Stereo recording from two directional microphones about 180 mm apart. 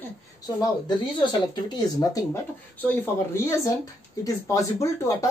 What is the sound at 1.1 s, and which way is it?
Speech, 25° left (ahead or behind).